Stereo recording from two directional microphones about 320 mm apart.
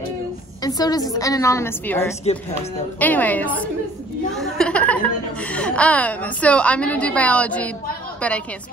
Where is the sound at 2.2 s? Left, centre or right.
Centre.